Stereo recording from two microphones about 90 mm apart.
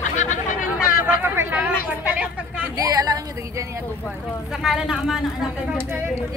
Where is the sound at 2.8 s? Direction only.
40° right (ahead or behind).